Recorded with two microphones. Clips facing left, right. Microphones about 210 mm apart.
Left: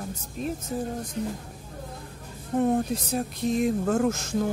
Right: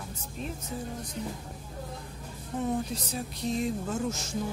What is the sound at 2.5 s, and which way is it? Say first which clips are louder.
Speech: left 7 dB; 55° left (ahead or behind).